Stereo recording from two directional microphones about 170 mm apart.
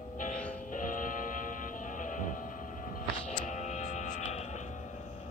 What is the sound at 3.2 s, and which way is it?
Music, 45° left (ahead or behind).